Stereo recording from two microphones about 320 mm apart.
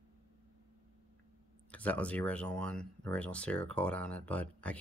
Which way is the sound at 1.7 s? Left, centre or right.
Centre.